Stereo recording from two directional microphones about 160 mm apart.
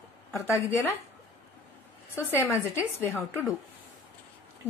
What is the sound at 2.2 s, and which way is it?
A woman's voice, 15° left (ahead or behind).